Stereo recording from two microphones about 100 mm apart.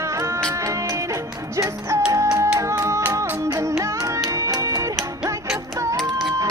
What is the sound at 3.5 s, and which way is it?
Music, 30° right (ahead or behind).